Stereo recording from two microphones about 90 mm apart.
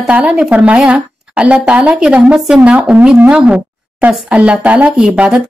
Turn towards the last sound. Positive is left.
turn(degrees=-10)  # may be behind; listen again after turning